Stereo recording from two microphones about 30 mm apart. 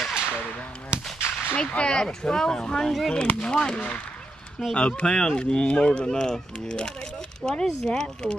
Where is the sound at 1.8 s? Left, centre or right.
Left.